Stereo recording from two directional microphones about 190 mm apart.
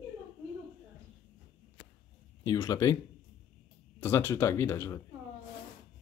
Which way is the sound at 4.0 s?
10° left (ahead or behind).